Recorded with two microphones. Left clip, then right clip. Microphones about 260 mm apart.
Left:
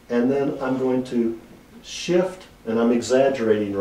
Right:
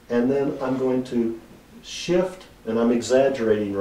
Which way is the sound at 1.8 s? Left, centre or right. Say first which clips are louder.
Left 1 dB; centre.